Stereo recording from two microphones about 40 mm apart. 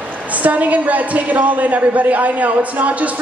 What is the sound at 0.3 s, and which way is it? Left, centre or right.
A woman's voice, right.